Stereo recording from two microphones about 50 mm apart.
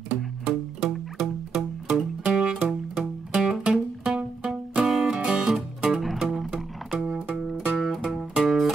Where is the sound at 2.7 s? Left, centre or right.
Centre.